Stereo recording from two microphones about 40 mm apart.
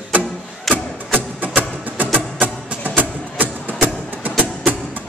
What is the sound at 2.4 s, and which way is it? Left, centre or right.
Music, right.